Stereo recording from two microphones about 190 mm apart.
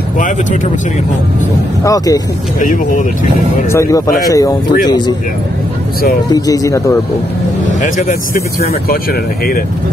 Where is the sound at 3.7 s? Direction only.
15° left (ahead or behind).